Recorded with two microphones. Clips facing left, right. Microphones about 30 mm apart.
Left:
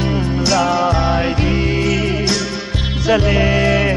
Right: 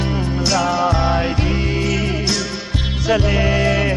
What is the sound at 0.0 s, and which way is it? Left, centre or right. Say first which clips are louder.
Music: left 2 dB; left.